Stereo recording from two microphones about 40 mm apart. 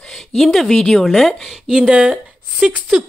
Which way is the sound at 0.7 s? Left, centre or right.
Centre.